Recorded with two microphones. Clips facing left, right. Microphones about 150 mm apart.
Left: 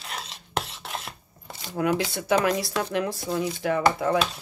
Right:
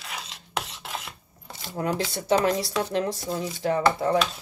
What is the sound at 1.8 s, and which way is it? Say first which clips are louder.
Speech: left 3 dB; 35° right (ahead or behind).